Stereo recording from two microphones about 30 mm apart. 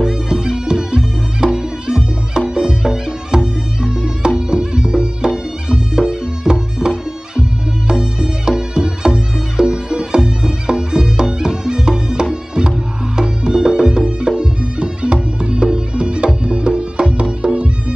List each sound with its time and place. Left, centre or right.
0.0 s music: right